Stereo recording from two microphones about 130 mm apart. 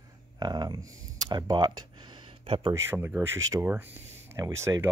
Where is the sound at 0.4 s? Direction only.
30° right (ahead or behind).